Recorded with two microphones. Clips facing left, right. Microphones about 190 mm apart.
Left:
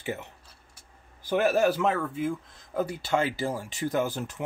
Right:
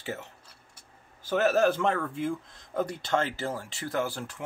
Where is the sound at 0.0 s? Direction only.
15° left (ahead or behind).